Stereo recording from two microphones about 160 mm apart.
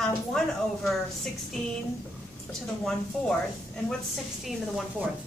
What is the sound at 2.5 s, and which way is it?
Speech, 5° left (ahead or behind).